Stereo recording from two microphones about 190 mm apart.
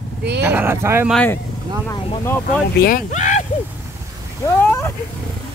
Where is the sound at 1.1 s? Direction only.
10° left (ahead or behind).